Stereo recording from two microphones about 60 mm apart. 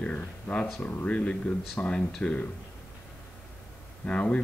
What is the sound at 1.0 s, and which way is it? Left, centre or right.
Speech, centre.